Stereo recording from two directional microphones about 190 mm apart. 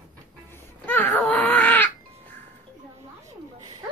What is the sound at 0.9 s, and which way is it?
Baby cry, 10° left (ahead or behind).